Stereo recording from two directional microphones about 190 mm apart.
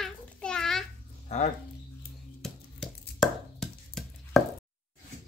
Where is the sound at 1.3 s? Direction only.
35° left (ahead or behind).